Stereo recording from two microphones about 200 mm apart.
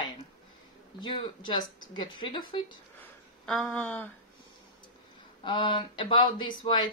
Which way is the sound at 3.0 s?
Centre (ahead or behind).